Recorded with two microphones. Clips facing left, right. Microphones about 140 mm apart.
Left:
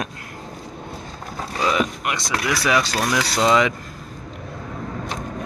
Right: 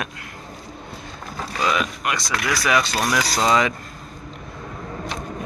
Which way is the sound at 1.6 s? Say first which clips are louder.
Left 2 dB; 20° left (ahead or behind).